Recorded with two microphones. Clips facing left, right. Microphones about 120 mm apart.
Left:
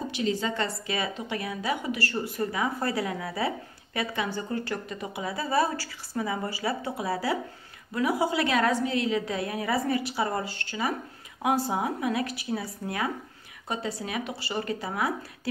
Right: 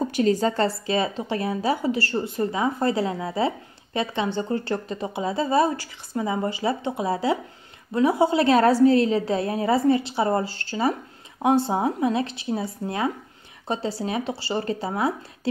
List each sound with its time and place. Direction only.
0.1 s a woman's voice: 45° right (ahead or behind); by 15.5 s 25° right (ahead or behind)